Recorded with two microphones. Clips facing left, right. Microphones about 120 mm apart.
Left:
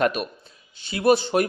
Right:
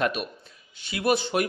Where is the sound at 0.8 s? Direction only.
30° left (ahead or behind).